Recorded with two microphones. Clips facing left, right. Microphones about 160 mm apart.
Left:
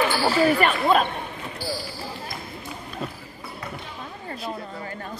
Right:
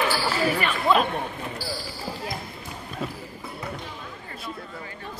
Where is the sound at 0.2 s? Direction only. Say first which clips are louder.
Left 5 dB; 45° left (ahead or behind).